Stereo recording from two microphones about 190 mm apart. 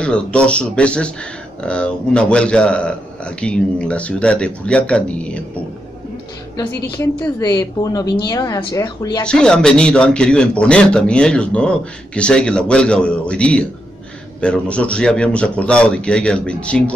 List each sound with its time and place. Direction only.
0.0 s a man's voice: 5° left (ahead or behind)
6.5 s a woman's voice: 15° left (ahead or behind)
9.2 s a man's voice: 5° left (ahead or behind)